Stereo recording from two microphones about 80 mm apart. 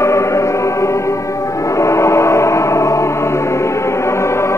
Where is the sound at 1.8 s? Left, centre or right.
Left.